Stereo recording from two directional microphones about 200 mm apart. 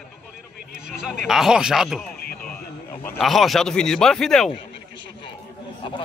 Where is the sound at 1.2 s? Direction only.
Centre (ahead or behind).